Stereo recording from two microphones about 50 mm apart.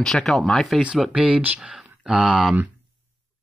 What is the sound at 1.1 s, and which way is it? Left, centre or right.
Speech, right.